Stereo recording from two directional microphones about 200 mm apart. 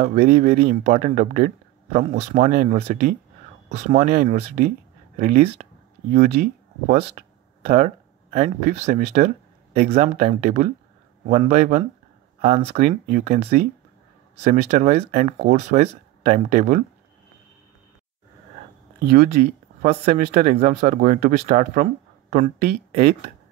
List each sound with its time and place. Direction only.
0.0 s speech: 35° right (ahead or behind)
5.3 s speech: 30° right (ahead or behind); by 11.8 s 45° right (ahead or behind)
12.4 s speech: 30° right (ahead or behind)
19.0 s speech: 55° right (ahead or behind)